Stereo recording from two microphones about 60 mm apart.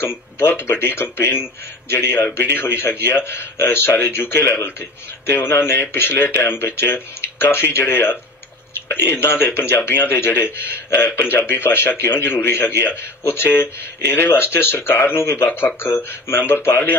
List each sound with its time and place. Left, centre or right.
0.0 s speech: left